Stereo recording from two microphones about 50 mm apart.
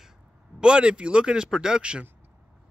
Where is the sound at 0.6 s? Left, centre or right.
Centre.